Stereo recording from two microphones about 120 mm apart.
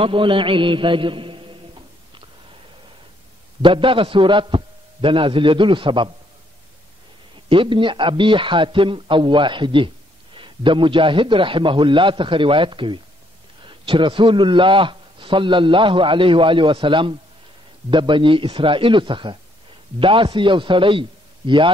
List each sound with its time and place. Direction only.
0.0 s a man's voice: 45° right (ahead or behind)
3.6 s a man's voice: 45° right (ahead or behind)
7.4 s a man's voice: 45° right (ahead or behind)